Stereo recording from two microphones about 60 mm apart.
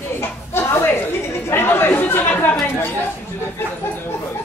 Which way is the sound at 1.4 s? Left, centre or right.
Left.